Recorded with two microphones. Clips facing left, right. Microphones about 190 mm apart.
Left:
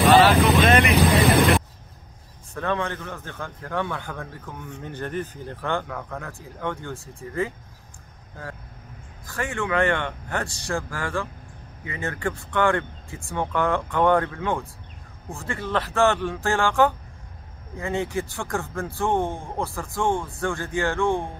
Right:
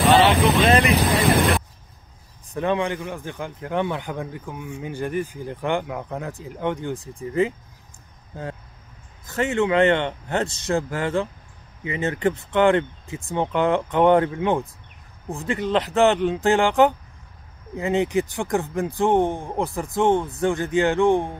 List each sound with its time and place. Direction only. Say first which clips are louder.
0.1 s speech: even; 30° right (ahead or behind)
2.5 s a man's voice: right 4 dB; 15° right (ahead or behind)
9.2 s speech: right 7 dB; 20° right (ahead or behind)